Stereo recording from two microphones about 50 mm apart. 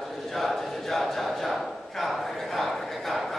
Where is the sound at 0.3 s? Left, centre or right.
Centre.